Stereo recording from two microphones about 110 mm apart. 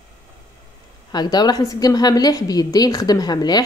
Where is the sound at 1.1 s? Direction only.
40° left (ahead or behind).